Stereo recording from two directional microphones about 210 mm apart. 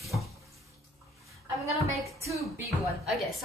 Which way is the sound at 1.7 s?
30° right (ahead or behind).